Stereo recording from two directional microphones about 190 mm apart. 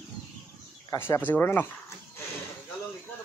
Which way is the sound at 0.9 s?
10° left (ahead or behind).